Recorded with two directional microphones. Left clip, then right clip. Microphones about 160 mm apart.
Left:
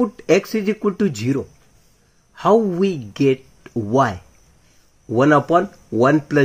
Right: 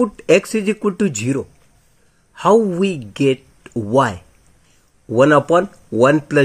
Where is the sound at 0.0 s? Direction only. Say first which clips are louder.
Right 3 dB; 15° right (ahead or behind).